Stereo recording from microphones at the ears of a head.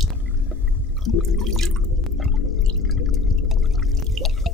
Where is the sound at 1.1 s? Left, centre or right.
Left.